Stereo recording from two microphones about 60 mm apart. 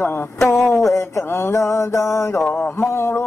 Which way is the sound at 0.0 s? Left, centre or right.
Left.